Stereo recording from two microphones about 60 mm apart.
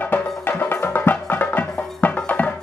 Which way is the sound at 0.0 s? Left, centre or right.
Left.